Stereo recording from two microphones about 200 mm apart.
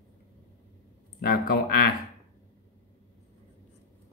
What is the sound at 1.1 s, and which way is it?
Speech, 50° left (ahead or behind).